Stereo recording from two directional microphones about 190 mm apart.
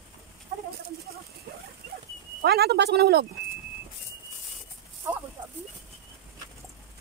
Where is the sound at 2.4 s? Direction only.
55° right (ahead or behind).